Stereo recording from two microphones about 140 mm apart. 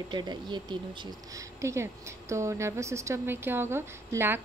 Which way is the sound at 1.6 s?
20° right (ahead or behind).